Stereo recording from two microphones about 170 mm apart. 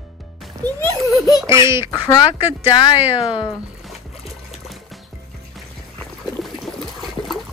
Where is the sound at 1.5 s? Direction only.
15° right (ahead or behind).